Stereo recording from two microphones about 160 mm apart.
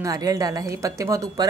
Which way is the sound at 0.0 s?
20° right (ahead or behind).